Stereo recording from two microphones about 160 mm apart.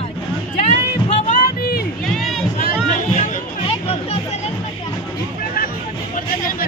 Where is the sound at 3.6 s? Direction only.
40° left (ahead or behind).